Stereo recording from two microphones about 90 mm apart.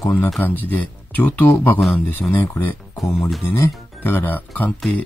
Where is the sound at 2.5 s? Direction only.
25° left (ahead or behind).